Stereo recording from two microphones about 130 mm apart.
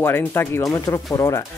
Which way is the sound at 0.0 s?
15° left (ahead or behind).